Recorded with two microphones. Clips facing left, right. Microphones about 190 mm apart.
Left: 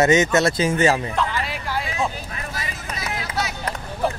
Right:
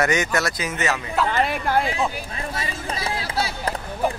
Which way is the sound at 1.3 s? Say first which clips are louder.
Right 6 dB; 55° right (ahead or behind).